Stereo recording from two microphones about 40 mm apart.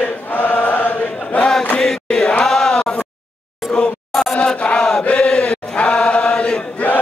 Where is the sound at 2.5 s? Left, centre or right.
Centre.